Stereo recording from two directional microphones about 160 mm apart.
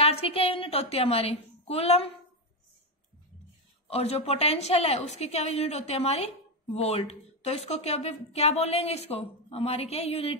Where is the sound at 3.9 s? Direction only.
40° left (ahead or behind).